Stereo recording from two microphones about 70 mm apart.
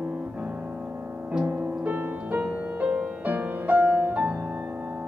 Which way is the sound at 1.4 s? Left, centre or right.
Right.